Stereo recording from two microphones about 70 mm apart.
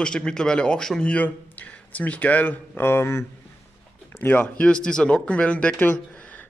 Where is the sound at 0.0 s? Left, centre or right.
Centre.